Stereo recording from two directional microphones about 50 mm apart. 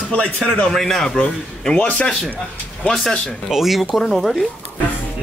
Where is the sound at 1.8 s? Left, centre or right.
Left.